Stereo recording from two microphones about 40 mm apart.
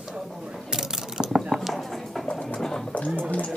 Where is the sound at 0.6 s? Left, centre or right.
Centre.